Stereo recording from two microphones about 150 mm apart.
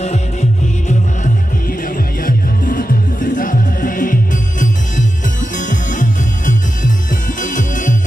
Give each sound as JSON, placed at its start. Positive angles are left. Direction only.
{"t": 0.0, "sound": "music", "side_deg": 50}
{"t": 2.2, "sound": "music", "side_deg": 70}